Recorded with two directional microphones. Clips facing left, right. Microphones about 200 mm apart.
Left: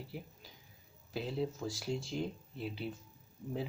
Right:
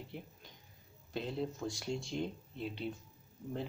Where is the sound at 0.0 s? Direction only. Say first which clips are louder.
Left 1 dB; 5° left (ahead or behind).